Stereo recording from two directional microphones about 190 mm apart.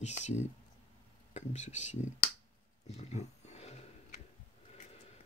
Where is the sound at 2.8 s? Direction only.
35° left (ahead or behind).